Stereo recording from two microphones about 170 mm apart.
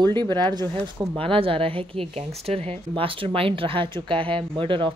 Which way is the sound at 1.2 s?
30° right (ahead or behind).